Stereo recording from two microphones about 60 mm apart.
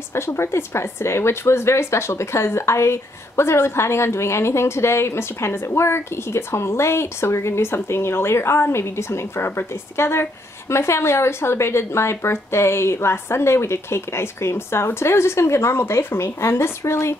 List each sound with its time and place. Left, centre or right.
0.1 s speech: left